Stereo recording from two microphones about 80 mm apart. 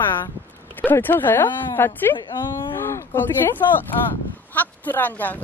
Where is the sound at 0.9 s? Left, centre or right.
Left.